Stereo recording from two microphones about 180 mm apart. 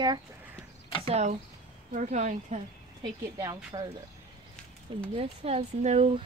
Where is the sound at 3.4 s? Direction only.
20° right (ahead or behind).